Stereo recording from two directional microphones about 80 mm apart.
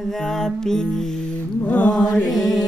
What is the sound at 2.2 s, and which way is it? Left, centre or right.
Mantra, centre.